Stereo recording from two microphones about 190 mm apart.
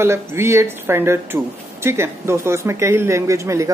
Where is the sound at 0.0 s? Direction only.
15° right (ahead or behind).